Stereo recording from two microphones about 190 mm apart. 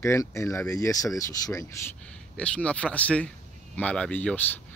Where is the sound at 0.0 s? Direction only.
15° left (ahead or behind).